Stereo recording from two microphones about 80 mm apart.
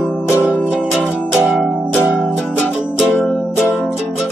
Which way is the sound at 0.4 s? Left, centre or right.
Left.